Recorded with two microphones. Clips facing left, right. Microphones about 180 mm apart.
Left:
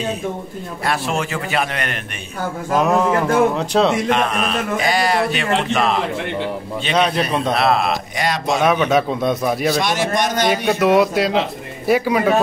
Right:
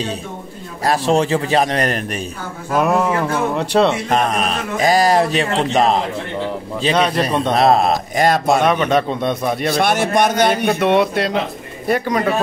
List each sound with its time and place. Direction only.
0.8 s a man's voice: 35° right (ahead or behind)
2.7 s speech: 5° right (ahead or behind)
4.1 s a man's voice: 40° right (ahead or behind)
7.0 s speech: centre (ahead or behind)
7.5 s a man's voice: 40° right (ahead or behind)
8.6 s speech: 5° left (ahead or behind)
9.8 s a man's voice: 60° right (ahead or behind)
10.7 s speech: centre (ahead or behind)